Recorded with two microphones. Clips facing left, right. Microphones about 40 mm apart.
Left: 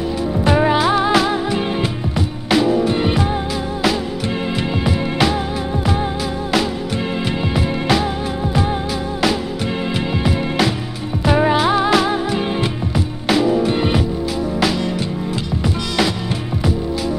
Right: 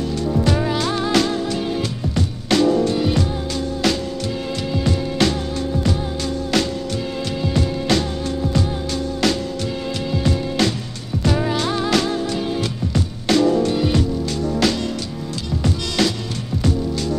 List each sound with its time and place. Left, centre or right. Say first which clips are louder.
0.5 s music: left 6 dB; left; by 2.7 s centre
2.9 s music: left 2 dB; left
3.8 s music: left 3 dB; centre
6.5 s music: left 3 dB; centre
8.4 s music: left 2 dB; left
9.2 s music: left 3 dB; centre
11.2 s music: left 6 dB; left
13.7 s music: left 2 dB; left
14.6 s music: left 1 dB; centre
16.0 s music: left 1 dB; centre